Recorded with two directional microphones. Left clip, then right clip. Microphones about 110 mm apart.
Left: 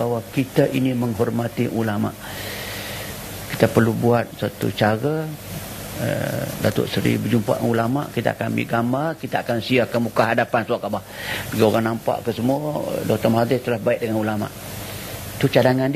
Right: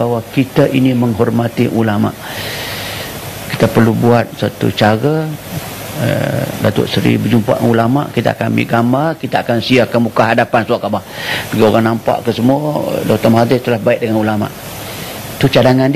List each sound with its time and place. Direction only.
0.0 s speech: 25° left (ahead or behind)
3.5 s speech: 25° left (ahead or behind)